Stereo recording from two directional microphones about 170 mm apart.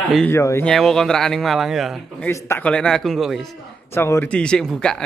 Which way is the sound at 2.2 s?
15° left (ahead or behind).